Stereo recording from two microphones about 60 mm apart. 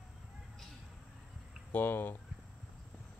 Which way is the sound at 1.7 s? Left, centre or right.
Left.